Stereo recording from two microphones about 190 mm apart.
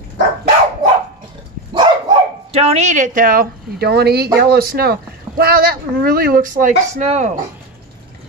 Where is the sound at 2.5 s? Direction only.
35° right (ahead or behind).